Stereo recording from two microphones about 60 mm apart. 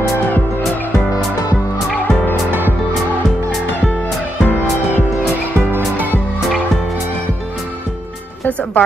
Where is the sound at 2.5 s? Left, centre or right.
Right.